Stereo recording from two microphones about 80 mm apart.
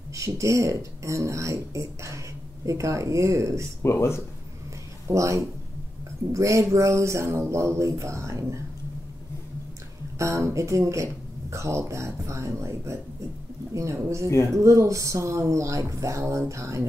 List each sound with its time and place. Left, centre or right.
0.1 s speech: right
3.8 s speech: left
5.0 s speech: right
10.1 s speech: right
13.9 s speech: right